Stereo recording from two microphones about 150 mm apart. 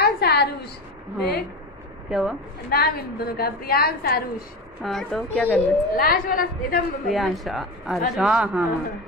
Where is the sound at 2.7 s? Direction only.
90° left.